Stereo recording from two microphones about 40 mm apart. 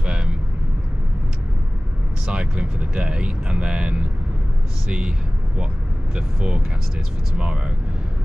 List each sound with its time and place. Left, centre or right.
0.0 s vehicle: right
2.2 s speech: right
6.1 s speech: right